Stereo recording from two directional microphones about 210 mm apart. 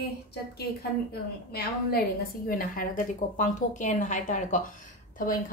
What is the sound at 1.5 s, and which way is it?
A woman's voice, 50° left (ahead or behind).